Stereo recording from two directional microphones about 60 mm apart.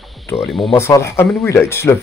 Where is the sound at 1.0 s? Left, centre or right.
Left.